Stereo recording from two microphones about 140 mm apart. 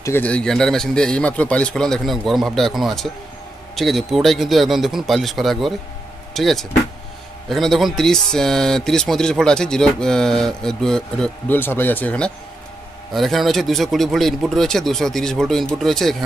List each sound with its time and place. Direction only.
0.0 s speech: 15° left (ahead or behind)